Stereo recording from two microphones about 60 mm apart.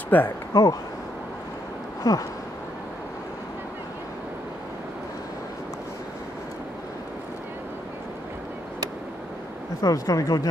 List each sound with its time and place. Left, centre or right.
0.1 s speech: left
0.5 s speech: left
2.0 s speech: left
9.8 s speech: left